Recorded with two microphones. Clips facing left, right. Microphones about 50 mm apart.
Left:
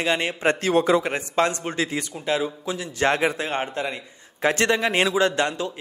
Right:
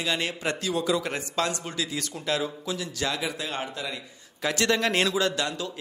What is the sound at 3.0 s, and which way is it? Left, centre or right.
Speech, left.